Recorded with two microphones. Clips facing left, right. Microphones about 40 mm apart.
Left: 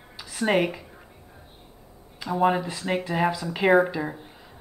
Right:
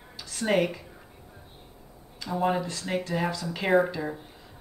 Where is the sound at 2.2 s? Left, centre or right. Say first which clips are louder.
Left 4 dB; centre.